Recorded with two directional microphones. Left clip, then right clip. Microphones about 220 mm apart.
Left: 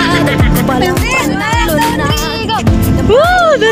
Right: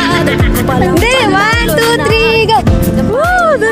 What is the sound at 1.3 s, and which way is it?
Music, 55° right (ahead or behind).